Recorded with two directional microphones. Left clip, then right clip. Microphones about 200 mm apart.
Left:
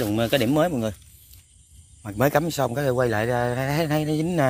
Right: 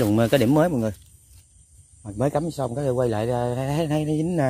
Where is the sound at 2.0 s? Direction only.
Centre (ahead or behind).